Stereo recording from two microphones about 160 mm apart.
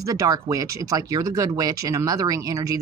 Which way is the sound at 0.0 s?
20° right (ahead or behind).